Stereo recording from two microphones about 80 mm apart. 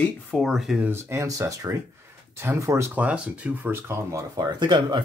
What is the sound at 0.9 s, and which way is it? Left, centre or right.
Speech, right.